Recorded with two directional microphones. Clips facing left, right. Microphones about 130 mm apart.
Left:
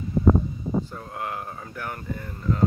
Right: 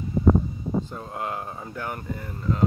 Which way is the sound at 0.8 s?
20° right (ahead or behind).